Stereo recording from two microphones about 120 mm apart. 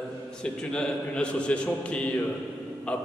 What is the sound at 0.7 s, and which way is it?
A man's voice, 10° left (ahead or behind).